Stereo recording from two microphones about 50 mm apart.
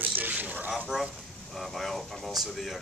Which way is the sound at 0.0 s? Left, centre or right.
Right.